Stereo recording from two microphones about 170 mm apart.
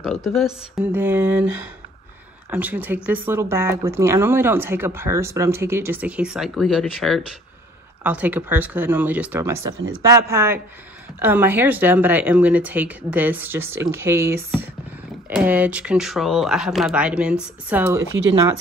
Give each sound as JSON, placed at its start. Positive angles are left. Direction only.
{"t": 0.0, "sound": "speech", "side_deg": 0}